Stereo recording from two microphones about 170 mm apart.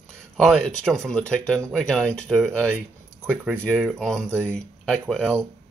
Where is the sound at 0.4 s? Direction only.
Centre (ahead or behind).